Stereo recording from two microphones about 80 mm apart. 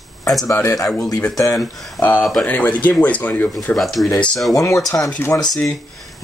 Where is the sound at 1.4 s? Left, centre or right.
Left.